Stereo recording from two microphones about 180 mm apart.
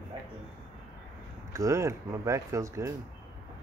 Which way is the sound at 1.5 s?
15° right (ahead or behind).